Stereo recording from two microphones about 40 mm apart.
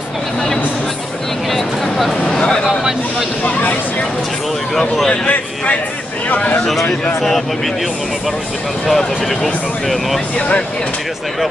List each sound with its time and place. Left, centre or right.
1.5 s a sound: centre
6.2 s speech: left
7.2 s a man's voice: centre
8.8 s speech: centre